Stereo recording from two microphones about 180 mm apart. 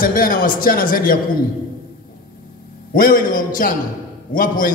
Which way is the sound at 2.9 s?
50° left (ahead or behind).